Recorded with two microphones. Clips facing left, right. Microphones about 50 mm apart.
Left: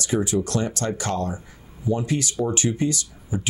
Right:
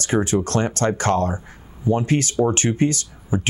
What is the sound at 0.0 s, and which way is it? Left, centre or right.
Speech, right.